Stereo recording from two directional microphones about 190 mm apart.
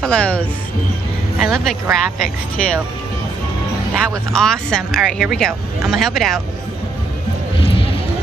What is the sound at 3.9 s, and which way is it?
Speech, centre (ahead or behind).